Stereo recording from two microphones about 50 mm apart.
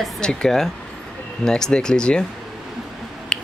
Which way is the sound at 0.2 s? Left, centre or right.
Centre.